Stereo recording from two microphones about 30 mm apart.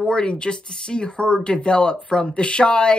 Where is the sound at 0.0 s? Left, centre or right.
Left.